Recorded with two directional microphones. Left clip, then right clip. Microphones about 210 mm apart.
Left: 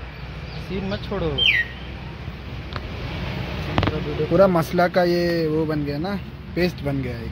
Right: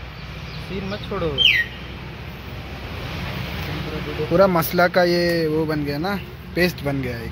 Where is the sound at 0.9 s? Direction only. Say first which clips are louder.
Right 1 dB; 45° left (ahead or behind).